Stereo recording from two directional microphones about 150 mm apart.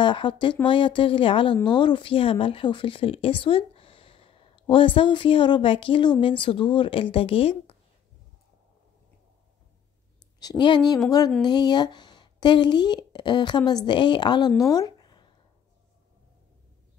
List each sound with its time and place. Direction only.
0.0 s a woman's voice: 30° left (ahead or behind)
10.4 s a woman's voice: 25° left (ahead or behind)
14.7 s a sound: 25° left (ahead or behind)